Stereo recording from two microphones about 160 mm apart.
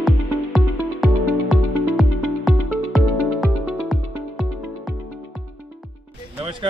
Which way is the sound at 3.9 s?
Centre (ahead or behind).